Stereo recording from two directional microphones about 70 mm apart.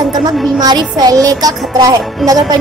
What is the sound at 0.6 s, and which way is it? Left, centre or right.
Child singing, right.